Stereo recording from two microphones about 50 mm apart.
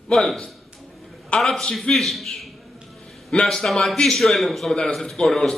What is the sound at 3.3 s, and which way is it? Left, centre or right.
Speech, centre.